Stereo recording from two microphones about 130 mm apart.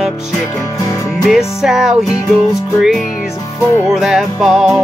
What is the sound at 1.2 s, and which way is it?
Music, centre (ahead or behind).